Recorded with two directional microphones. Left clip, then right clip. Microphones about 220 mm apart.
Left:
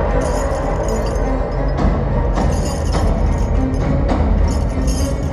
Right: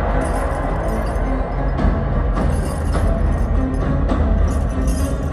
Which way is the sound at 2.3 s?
Centre (ahead or behind).